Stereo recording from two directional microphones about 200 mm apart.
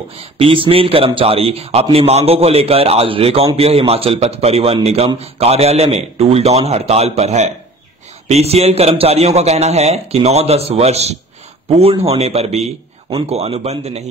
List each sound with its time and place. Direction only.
0.1 s a man's voice: 30° right (ahead or behind)